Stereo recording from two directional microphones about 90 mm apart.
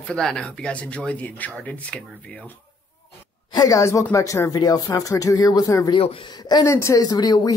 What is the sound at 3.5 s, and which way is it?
A woman's voice, 40° left (ahead or behind).